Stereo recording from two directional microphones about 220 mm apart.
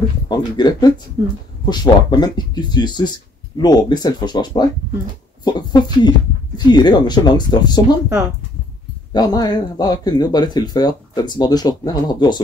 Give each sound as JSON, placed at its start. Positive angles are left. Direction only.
{"t": 0.3, "sound": "speech", "side_deg": 20}
{"t": 9.1, "sound": "speech", "side_deg": 20}